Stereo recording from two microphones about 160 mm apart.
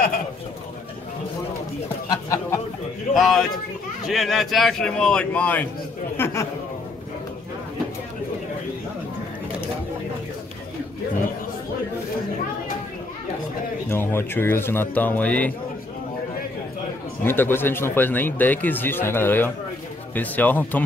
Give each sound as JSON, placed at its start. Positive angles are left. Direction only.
{"t": 2.0, "sound": "speech", "side_deg": 20}
{"t": 3.2, "sound": "a man's voice", "side_deg": 0}
{"t": 13.8, "sound": "speech", "side_deg": 15}
{"t": 17.2, "sound": "speech", "side_deg": 15}